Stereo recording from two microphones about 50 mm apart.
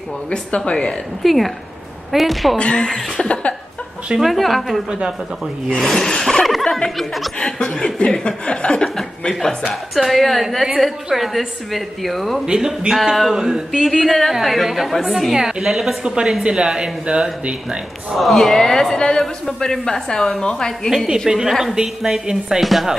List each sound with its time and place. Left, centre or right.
0.3 s speech: left
1.2 s a woman's voice: centre
2.5 s speech: centre
4.2 s a woman's voice: centre
7.3 s a man's voice: centre
12.4 s a woman's voice: centre
18.1 s a man's voice: centre
21.3 s a woman's voice: centre